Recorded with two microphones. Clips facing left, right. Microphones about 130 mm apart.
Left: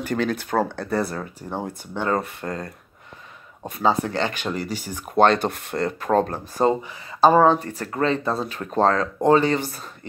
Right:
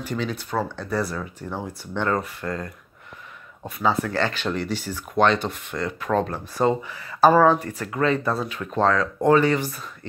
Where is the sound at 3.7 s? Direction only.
30° left (ahead or behind).